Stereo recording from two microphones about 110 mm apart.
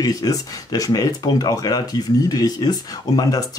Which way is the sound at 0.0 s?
35° left (ahead or behind).